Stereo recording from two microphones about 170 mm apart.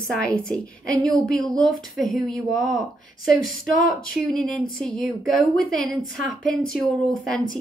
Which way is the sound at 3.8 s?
Centre (ahead or behind).